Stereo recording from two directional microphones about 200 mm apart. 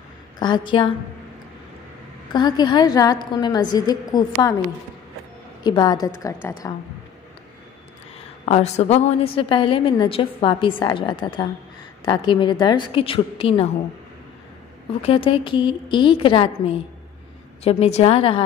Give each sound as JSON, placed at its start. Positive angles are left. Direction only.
{"t": 0.4, "sound": "a woman's voice", "side_deg": 20}
{"t": 2.3, "sound": "a woman's voice", "side_deg": 20}
{"t": 5.6, "sound": "a woman's voice", "side_deg": 20}
{"t": 8.5, "sound": "a woman's voice", "side_deg": 35}
{"t": 15.0, "sound": "a woman's voice", "side_deg": 30}